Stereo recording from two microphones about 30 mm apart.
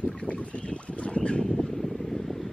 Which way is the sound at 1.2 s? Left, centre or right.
Left.